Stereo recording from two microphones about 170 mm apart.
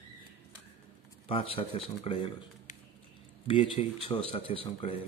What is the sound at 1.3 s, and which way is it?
Speech, 35° left (ahead or behind).